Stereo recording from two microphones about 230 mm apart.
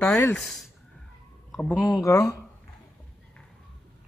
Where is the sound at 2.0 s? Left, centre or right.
Centre.